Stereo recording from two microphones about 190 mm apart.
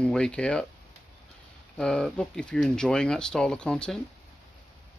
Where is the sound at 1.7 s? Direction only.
5° left (ahead or behind).